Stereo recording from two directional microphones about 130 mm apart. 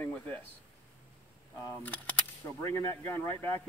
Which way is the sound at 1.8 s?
15° left (ahead or behind).